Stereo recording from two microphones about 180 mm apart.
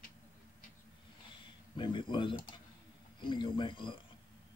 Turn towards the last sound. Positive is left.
turn(degrees=25)  # may be behind; listen again after turning